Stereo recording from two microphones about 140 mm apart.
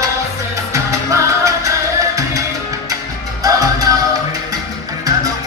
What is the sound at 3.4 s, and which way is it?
Music, 25° right (ahead or behind).